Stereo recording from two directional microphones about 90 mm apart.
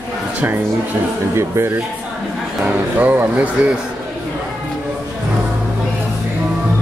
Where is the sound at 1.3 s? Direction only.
30° right (ahead or behind).